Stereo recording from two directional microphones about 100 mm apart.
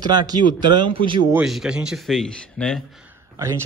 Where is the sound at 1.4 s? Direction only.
5° right (ahead or behind).